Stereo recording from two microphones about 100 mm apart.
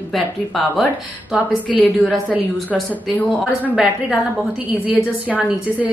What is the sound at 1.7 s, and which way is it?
A woman's voice, centre (ahead or behind).